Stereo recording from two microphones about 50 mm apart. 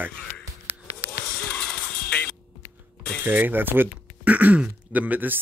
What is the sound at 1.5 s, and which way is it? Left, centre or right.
Music, centre.